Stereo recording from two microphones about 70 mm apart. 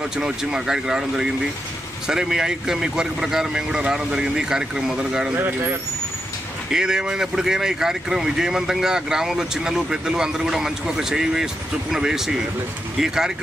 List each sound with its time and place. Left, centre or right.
0.2 s speech: centre
5.3 s speech: right
6.7 s speech: centre